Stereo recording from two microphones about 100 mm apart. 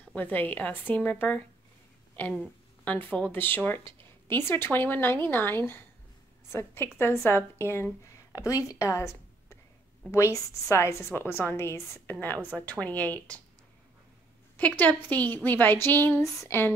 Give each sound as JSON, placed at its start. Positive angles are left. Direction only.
{"t": 0.1, "sound": "a woman's voice", "side_deg": 15}
{"t": 8.4, "sound": "a woman's voice", "side_deg": 35}
{"t": 14.6, "sound": "a woman's voice", "side_deg": 15}